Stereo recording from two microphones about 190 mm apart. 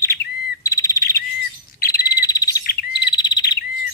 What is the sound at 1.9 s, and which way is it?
Frog, 20° left (ahead or behind).